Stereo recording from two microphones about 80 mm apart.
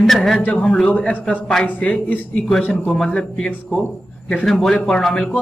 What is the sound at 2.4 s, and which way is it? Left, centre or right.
A man's voice, centre.